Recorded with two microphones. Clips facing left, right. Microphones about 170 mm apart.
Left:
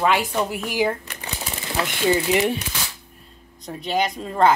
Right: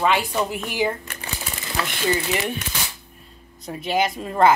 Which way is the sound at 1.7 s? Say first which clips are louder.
Left 3 dB; 20° left (ahead or behind).